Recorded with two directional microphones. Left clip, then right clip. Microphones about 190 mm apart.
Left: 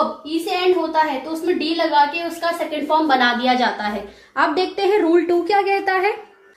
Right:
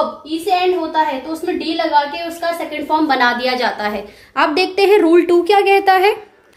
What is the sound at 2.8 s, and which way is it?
A woman's voice, 40° right (ahead or behind).